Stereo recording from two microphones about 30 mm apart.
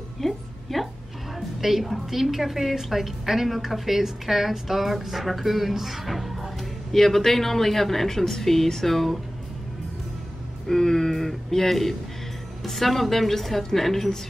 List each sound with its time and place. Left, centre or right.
0.2 s music: centre
1.6 s a woman's voice: centre
6.9 s speech: centre
10.7 s speech: centre